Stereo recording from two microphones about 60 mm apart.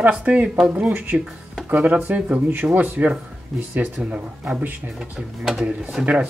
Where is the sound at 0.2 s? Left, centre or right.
Right.